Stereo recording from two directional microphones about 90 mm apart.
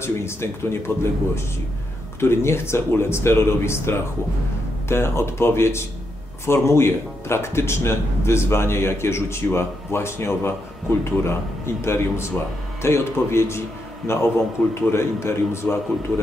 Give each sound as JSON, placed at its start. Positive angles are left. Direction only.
{"t": 0.0, "sound": "speech", "side_deg": 30}